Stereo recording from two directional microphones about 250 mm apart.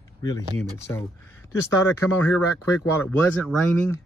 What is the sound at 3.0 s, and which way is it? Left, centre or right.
Speech, centre.